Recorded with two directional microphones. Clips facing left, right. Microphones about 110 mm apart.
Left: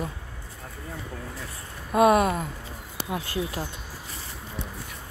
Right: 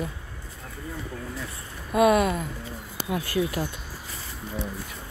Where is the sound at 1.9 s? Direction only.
40° left (ahead or behind).